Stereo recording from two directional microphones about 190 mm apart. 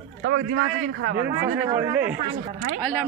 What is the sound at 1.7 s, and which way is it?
Speech, 10° right (ahead or behind).